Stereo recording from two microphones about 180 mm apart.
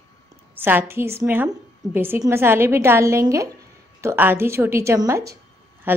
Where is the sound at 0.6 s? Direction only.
10° right (ahead or behind).